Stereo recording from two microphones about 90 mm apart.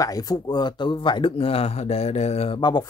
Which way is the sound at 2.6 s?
55° left (ahead or behind).